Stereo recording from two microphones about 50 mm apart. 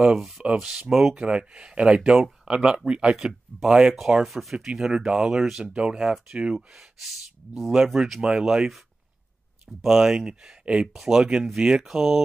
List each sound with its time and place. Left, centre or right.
0.0 s speech: centre
6.5 s speech: centre
9.8 s speech: centre
10.9 s speech: centre